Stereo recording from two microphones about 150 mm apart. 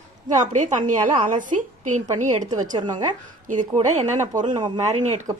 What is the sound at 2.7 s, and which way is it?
A woman's voice, 30° right (ahead or behind).